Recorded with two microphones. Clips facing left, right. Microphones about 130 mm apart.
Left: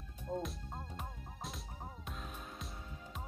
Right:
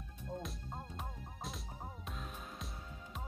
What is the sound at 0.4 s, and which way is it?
Music, centre (ahead or behind).